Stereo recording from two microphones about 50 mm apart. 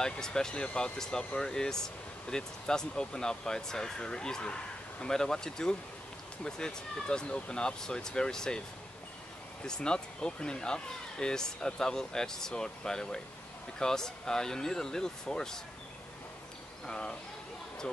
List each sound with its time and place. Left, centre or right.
0.0 s speech: centre
9.7 s speech: centre
16.8 s speech: centre